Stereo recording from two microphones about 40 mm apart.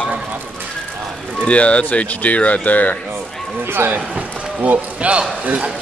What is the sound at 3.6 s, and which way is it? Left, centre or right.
Speech, right.